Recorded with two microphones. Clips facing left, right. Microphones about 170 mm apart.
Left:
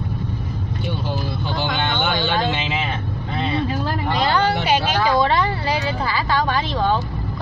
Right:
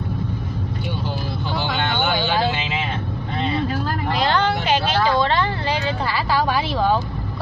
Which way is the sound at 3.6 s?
Centre (ahead or behind).